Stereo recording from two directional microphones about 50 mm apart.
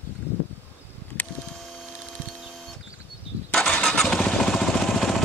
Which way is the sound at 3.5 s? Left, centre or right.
Centre.